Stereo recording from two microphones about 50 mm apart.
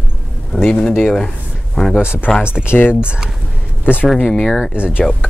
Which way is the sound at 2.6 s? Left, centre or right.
Left.